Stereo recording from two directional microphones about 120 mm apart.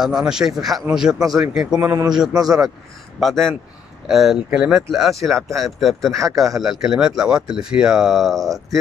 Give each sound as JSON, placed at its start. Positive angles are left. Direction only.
{"t": 0.0, "sound": "speech", "side_deg": -5}
{"t": 2.3, "sound": "a man's voice", "side_deg": -30}
{"t": 3.2, "sound": "speech", "side_deg": 0}